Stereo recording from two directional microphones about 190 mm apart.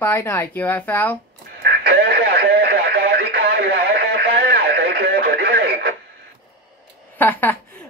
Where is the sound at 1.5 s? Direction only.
60° right (ahead or behind).